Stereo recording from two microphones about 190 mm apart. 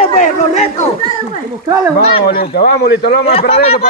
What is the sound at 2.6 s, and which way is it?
Speech, 60° left (ahead or behind).